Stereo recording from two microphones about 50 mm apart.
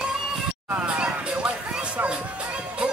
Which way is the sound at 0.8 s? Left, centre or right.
Right.